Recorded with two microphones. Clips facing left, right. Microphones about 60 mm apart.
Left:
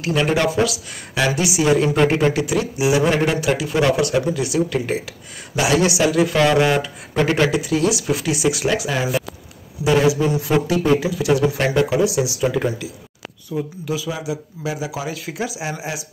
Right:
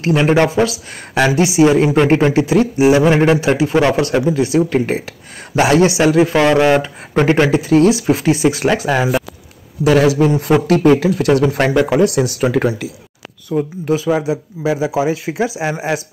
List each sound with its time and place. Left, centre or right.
0.0 s a man's voice: right
9.8 s speech: right
13.5 s speech: right
13.8 s a man's voice: right